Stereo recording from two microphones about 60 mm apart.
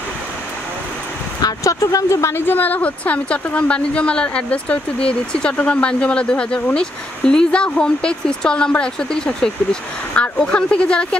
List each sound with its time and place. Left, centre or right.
1.4 s speech: left
2.4 s speech: left